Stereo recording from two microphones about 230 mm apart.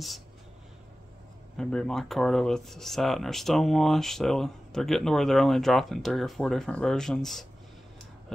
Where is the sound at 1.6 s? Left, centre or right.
Centre.